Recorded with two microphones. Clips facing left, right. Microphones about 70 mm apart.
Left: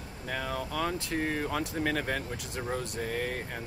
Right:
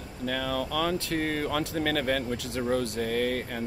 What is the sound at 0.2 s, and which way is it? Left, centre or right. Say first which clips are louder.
Speech: right 5 dB; left.